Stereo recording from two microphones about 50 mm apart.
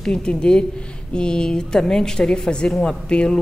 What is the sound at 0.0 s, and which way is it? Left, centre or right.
A woman's voice, centre.